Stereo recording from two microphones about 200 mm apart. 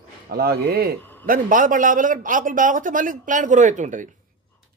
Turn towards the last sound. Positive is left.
turn(degrees=-40)  # may be behind; listen again after turning